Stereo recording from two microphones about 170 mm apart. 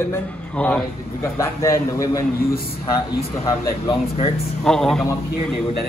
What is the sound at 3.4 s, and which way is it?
Speech, 20° left (ahead or behind).